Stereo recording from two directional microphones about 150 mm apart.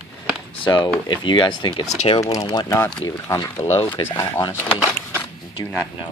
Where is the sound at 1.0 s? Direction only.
30° left (ahead or behind).